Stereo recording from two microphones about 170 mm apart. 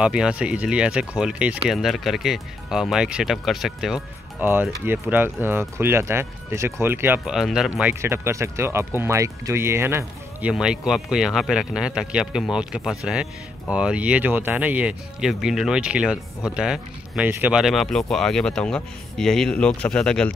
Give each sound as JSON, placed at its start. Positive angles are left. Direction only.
{"t": 0.0, "sound": "speech", "side_deg": -5}
{"t": 7.9, "sound": "speech", "side_deg": -15}